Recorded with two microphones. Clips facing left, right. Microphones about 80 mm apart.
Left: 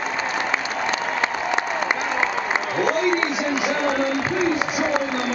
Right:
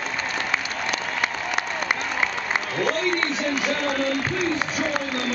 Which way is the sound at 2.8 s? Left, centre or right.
Centre.